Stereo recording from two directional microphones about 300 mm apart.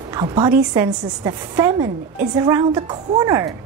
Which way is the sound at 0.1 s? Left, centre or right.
Centre.